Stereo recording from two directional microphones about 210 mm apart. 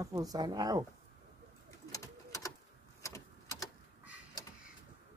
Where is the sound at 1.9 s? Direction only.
15° left (ahead or behind).